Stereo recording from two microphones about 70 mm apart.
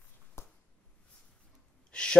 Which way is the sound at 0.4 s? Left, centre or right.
Left.